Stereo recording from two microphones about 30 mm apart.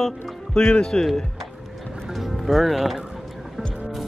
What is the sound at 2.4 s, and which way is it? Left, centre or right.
Speech, centre.